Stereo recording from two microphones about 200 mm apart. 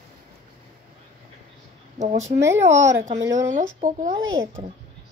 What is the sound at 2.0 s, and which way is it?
Speech, 35° right (ahead or behind).